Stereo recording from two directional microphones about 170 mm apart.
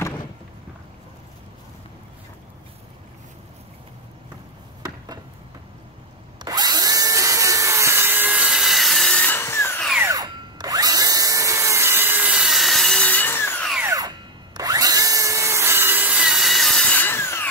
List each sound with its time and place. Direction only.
4.8 s chop: 20° right (ahead or behind)
6.4 s tools: 25° right (ahead or behind); by 9.8 s 15° left (ahead or behind)
10.0 s drill: 20° right (ahead or behind); by 13.7 s 10° left (ahead or behind)
13.8 s drill: 20° right (ahead or behind); by 17.5 s 15° left (ahead or behind)